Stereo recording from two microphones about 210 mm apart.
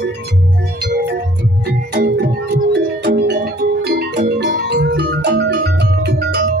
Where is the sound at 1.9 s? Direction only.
50° right (ahead or behind).